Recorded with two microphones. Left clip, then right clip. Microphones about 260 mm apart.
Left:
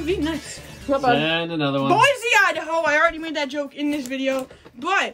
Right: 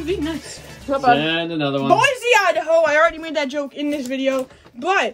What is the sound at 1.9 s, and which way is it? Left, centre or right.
A woman's voice, centre.